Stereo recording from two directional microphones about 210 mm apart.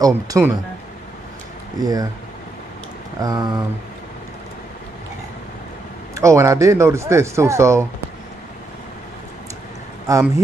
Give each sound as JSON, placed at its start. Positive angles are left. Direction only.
{"t": 0.0, "sound": "speech", "side_deg": -15}
{"t": 1.8, "sound": "speech", "side_deg": -15}
{"t": 3.2, "sound": "speech", "side_deg": -20}
{"t": 6.1, "sound": "speech", "side_deg": -15}
{"t": 10.0, "sound": "speech", "side_deg": -15}